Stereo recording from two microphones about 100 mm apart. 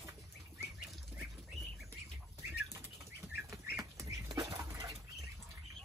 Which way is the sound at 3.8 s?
35° right (ahead or behind).